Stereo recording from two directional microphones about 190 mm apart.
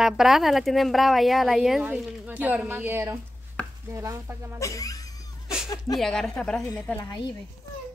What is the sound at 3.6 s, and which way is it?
Chopping, 5° left (ahead or behind).